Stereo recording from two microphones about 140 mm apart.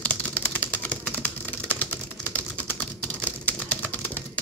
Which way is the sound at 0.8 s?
10° left (ahead or behind).